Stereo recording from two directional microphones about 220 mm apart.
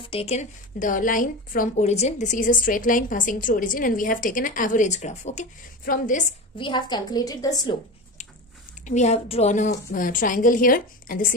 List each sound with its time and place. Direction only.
0.0 s a woman's voice: 25° left (ahead or behind)
6.6 s a woman's voice: 20° left (ahead or behind)
8.8 s a woman's voice: 30° left (ahead or behind)
9.7 s a woman's voice: 40° left (ahead or behind)